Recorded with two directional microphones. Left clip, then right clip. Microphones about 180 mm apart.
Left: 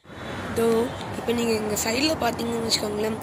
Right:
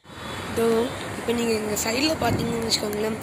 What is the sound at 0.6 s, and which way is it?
Speech, centre (ahead or behind).